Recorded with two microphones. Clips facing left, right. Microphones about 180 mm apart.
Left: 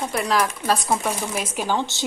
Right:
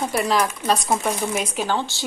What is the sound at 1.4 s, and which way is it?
Speech, 10° left (ahead or behind).